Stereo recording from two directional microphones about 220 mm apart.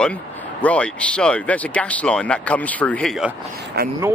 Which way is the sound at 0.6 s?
5° left (ahead or behind).